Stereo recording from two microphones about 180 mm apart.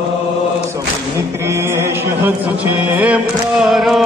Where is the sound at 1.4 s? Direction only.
15° right (ahead or behind).